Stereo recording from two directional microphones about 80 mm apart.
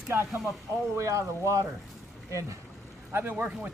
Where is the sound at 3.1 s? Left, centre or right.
Right.